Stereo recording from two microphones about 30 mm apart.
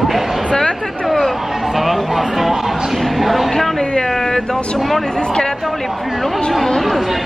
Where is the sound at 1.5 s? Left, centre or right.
Centre.